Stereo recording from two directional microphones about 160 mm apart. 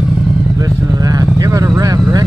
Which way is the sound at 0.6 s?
20° right (ahead or behind).